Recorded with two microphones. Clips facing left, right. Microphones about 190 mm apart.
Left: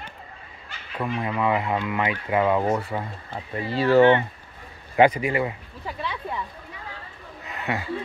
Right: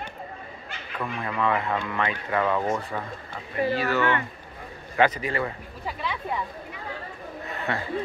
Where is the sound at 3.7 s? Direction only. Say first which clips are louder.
Left 10 dB; 30° left (ahead or behind).